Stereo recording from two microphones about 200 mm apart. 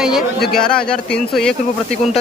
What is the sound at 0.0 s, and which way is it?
Speech, centre (ahead or behind).